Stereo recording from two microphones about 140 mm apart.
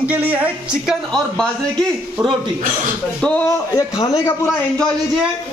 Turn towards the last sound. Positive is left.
turn(degrees=25)  # may be behind; listen again after turning